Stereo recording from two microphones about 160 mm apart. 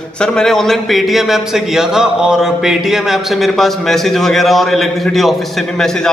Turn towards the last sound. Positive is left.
turn(degrees=5)  # may be behind; listen again after turning